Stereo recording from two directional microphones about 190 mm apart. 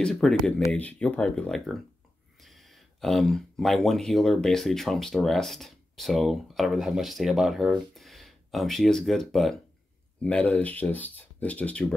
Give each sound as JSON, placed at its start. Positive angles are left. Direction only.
{"t": 0.0, "sound": "speech", "side_deg": 5}